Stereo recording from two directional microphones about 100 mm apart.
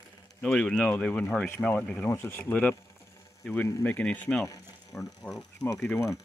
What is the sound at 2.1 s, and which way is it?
Speech, 25° left (ahead or behind).